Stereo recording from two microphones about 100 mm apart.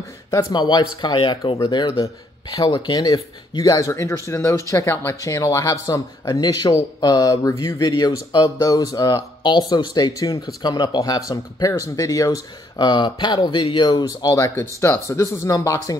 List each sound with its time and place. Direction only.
0.5 s speech: 45° left (ahead or behind)